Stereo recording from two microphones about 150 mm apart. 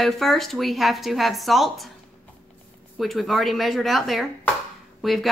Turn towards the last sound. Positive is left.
turn(degrees=0)  # may be behind; listen again after turning